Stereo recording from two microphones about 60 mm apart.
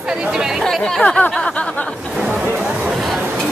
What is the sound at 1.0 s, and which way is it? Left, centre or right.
Speech, left.